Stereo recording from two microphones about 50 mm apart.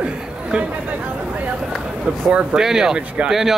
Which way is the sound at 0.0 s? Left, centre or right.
Centre.